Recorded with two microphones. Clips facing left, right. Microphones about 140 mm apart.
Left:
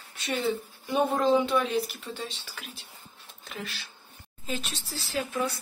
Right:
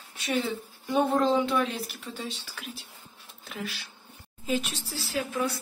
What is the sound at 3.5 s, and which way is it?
Speech, 5° right (ahead or behind).